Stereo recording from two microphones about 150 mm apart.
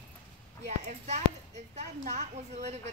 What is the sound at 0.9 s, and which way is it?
A woman's voice, 50° right (ahead or behind).